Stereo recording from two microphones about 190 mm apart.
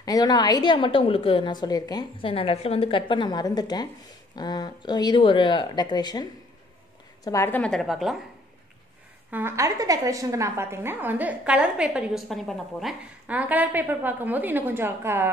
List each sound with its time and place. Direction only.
0.0 s a woman's voice: 20° left (ahead or behind)
7.2 s a woman's voice: 15° left (ahead or behind)
9.3 s a woman's voice: 10° right (ahead or behind)